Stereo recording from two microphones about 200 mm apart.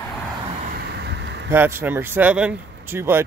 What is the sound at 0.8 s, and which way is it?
Vehicle, 55° right (ahead or behind).